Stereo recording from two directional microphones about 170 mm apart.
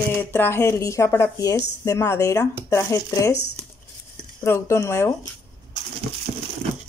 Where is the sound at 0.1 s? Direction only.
10° left (ahead or behind).